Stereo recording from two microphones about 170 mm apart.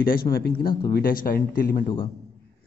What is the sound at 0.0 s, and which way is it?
A man's voice, 60° left (ahead or behind).